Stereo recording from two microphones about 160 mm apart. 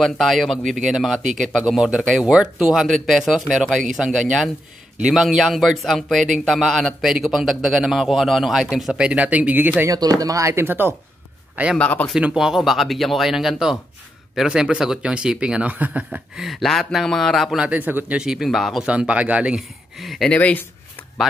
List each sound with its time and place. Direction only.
0.0 s speech: centre (ahead or behind)
11.8 s speech: 10° left (ahead or behind)
12.1 s speech: 5° right (ahead or behind)